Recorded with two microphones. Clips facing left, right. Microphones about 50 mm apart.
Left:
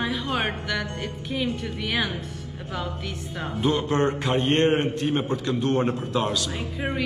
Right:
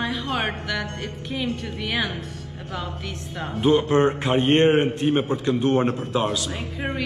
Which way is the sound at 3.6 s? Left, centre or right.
Centre.